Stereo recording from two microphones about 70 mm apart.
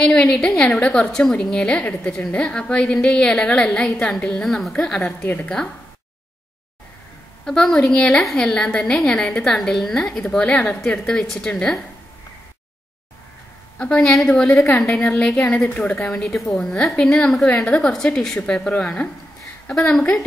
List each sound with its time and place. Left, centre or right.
0.0 s a woman's voice: centre
1.8 s a woman's voice: centre
5.2 s a woman's voice: left
7.4 s a woman's voice: centre
13.7 s a woman's voice: centre
19.7 s a woman's voice: centre